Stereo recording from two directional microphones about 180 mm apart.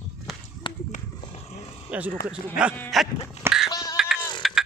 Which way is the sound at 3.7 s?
20° left (ahead or behind).